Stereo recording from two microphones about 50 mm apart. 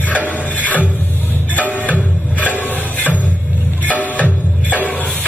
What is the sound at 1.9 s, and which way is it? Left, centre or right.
Music, left.